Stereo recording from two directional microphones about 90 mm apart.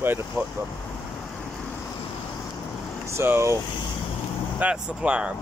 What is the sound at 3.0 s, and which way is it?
Speech, 25° right (ahead or behind).